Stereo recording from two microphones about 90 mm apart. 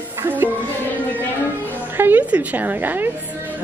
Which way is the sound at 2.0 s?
20° right (ahead or behind).